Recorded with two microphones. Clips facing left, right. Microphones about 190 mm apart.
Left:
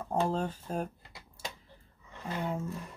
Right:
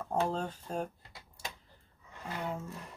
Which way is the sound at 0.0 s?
10° left (ahead or behind).